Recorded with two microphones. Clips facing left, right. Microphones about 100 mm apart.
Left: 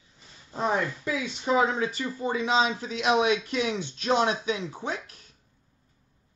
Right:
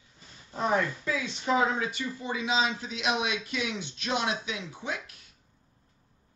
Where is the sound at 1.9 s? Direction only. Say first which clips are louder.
Left 4 dB; 40° left (ahead or behind).